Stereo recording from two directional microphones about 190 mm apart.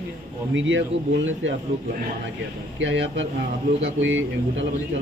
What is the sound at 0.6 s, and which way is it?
Speech, 75° right (ahead or behind).